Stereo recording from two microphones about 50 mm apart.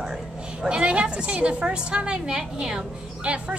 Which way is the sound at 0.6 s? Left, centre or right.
Right.